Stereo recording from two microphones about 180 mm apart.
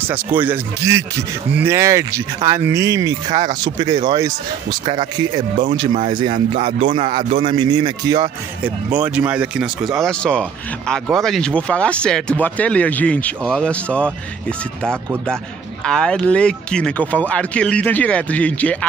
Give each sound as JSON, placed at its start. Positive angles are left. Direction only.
{"t": 0.0, "sound": "speech", "side_deg": -10}
{"t": 6.0, "sound": "speech", "side_deg": -45}
{"t": 8.6, "sound": "speech", "side_deg": -10}
{"t": 15.8, "sound": "speech", "side_deg": 5}